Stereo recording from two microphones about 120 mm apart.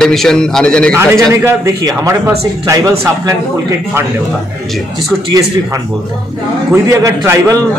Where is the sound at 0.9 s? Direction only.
25° right (ahead or behind).